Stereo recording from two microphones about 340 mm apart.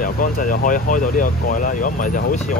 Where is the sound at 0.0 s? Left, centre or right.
Left.